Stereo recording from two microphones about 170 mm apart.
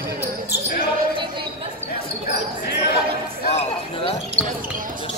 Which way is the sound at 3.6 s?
35° left (ahead or behind).